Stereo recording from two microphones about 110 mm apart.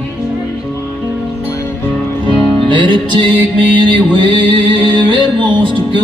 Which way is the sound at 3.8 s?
50° right (ahead or behind).